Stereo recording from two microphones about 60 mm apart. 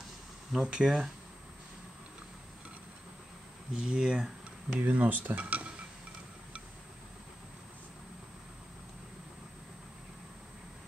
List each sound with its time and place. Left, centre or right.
0.5 s speech: centre
3.7 s speech: centre
4.7 s speech: right